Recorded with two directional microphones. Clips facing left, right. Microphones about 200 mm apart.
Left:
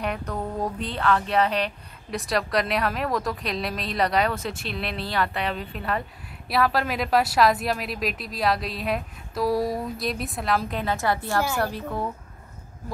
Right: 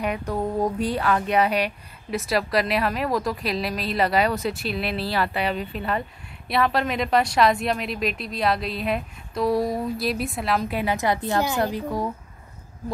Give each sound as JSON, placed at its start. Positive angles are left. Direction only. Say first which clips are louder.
{"t": 0.0, "sound": "a woman's voice", "louder": "right 3 dB", "side_deg": -10}
{"t": 10.8, "sound": "a woman's voice", "louder": "right 2 dB", "side_deg": -15}